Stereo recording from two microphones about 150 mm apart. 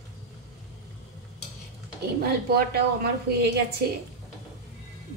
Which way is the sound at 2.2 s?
90° right.